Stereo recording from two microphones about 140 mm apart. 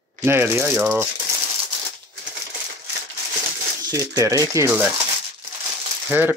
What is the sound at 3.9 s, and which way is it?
Speech, 20° right (ahead or behind).